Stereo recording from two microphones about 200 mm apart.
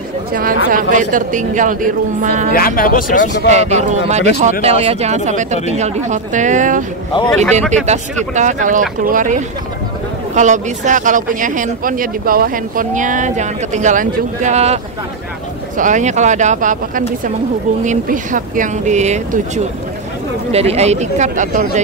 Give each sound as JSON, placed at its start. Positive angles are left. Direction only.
{"t": 0.3, "sound": "speech", "side_deg": -45}
{"t": 2.5, "sound": "speech", "side_deg": 45}
{"t": 3.4, "sound": "speech", "side_deg": -35}
{"t": 15.8, "sound": "speech", "side_deg": -40}